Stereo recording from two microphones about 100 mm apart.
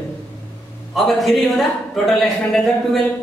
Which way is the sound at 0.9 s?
Centre (ahead or behind).